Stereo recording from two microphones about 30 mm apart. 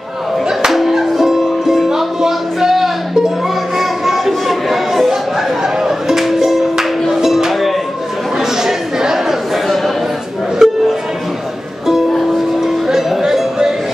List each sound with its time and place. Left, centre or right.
0.7 s music: centre
5.6 s music: centre
6.1 s music: centre
8.4 s chatter: centre
10.6 s music: centre
12.5 s music: centre